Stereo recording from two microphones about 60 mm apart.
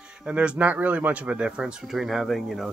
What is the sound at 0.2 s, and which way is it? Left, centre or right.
Speech, centre.